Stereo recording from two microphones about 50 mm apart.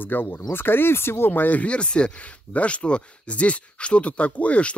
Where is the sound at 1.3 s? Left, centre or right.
Left.